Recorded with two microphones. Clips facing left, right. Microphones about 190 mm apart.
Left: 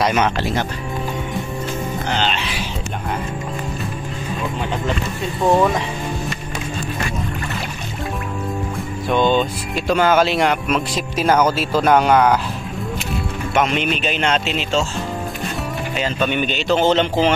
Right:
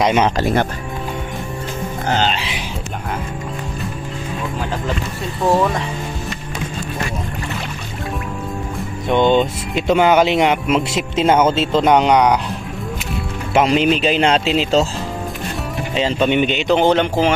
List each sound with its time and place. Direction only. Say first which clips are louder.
0.0 s speech: right 3 dB; 25° right (ahead or behind)
0.4 s speech: right 4 dB; 50° right (ahead or behind)
2.0 s music: right 4 dB; 40° right (ahead or behind)
5.5 s speech: left 1 dB; centre (ahead or behind)
9.1 s speech: right 3 dB; 20° right (ahead or behind)
13.5 s speech: right 5 dB; 30° right (ahead or behind)
16.0 s speech: right 5 dB; 25° right (ahead or behind); by 17.3 s 10° right (ahead or behind)